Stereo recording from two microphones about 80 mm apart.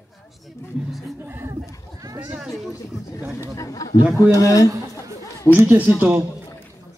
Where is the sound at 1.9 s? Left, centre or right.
Right.